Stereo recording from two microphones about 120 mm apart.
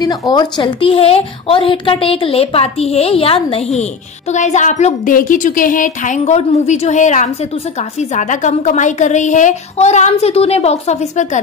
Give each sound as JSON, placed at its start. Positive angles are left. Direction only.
{"t": 0.0, "sound": "a woman's voice", "side_deg": 35}
{"t": 4.3, "sound": "a woman's voice", "side_deg": 80}